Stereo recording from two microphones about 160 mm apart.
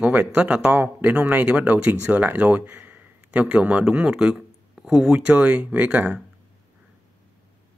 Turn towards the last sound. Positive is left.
turn(degrees=-10)  # may be behind; listen again after turning